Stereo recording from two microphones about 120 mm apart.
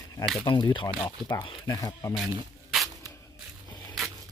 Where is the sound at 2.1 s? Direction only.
Centre (ahead or behind).